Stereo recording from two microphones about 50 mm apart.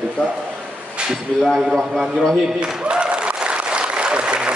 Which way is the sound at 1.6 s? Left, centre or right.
Centre.